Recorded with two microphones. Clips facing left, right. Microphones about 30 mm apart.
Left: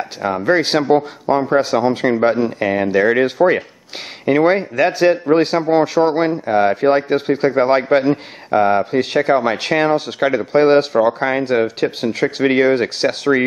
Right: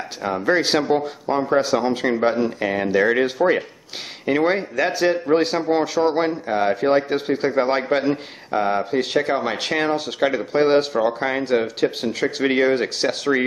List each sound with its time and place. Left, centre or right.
0.2 s a man's voice: centre
1.2 s speech: left
1.5 s a man's voice: centre
8.5 s speech: left
8.9 s a man's voice: centre